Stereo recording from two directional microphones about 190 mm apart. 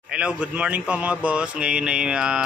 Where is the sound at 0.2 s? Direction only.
5° right (ahead or behind).